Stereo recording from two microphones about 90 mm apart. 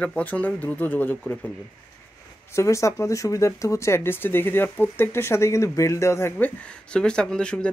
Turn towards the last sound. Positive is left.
turn(degrees=10)  # may be behind; listen again after turning